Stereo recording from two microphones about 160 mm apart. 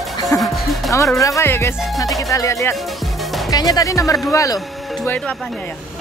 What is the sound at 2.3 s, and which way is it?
Speech, 20° left (ahead or behind).